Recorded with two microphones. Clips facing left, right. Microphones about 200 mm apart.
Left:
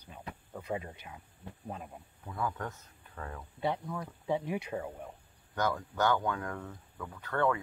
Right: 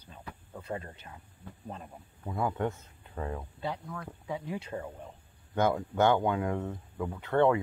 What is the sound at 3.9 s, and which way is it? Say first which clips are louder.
Speech: left 4 dB; 25° left (ahead or behind).